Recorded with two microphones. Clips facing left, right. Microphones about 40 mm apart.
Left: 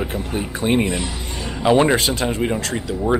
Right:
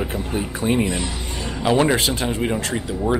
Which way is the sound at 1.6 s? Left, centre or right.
Centre.